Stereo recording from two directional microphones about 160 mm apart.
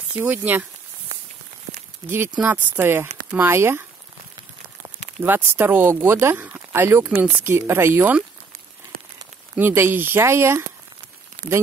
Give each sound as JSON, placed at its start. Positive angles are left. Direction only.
{"t": 0.2, "sound": "speech", "side_deg": -10}
{"t": 5.2, "sound": "speech", "side_deg": -15}
{"t": 9.6, "sound": "speech", "side_deg": -15}